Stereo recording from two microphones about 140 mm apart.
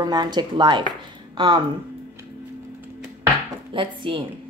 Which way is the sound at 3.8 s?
40° right (ahead or behind).